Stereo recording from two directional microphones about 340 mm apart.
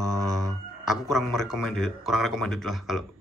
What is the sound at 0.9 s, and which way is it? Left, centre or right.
Speech, centre.